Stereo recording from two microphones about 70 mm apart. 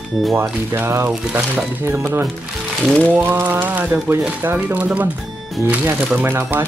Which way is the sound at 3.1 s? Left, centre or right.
Right.